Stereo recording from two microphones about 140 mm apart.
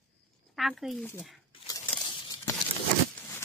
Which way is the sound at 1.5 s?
40° left (ahead or behind).